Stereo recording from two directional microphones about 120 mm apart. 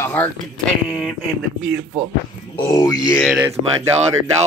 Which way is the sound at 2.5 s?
35° left (ahead or behind).